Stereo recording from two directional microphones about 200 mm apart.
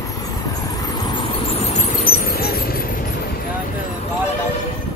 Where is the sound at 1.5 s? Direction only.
35° left (ahead or behind).